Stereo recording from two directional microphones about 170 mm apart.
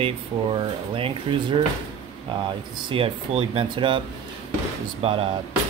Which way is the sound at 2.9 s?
35° right (ahead or behind).